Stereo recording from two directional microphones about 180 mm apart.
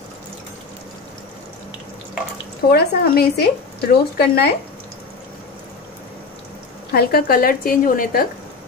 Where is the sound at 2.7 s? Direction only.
60° left (ahead or behind).